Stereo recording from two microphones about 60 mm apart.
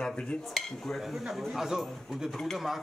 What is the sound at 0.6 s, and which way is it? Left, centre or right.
Speech, centre.